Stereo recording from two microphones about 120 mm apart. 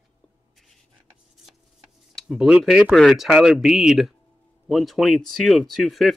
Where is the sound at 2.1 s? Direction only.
5° right (ahead or behind).